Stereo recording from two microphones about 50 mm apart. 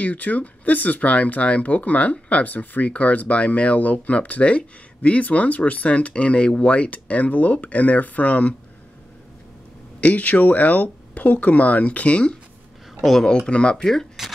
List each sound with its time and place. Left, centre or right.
0.0 s speech: left
9.9 s speech: left
13.0 s speech: centre
13.5 s speech: centre